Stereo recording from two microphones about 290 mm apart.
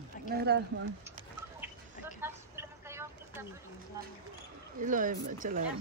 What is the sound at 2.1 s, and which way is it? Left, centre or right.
Vehicle, centre.